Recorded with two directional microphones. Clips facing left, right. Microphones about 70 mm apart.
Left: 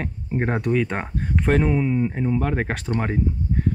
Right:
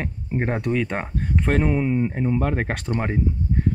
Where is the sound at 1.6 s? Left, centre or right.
Right.